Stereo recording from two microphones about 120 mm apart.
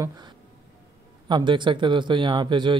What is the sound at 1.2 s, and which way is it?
Speech, 40° right (ahead or behind).